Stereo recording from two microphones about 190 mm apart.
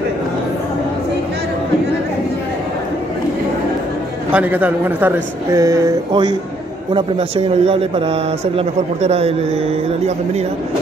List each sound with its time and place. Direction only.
4.3 s a woman's voice: 10° right (ahead or behind); by 9.3 s 30° right (ahead or behind)